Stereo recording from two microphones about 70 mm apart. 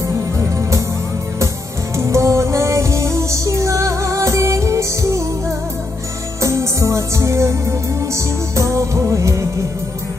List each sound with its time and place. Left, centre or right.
0.0 s music: right
2.0 s music: right
6.4 s music: right